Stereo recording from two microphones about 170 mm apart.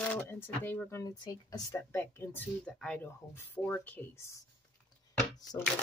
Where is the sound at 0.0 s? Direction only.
10° left (ahead or behind).